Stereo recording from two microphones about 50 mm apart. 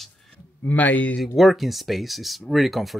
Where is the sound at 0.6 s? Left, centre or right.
Left.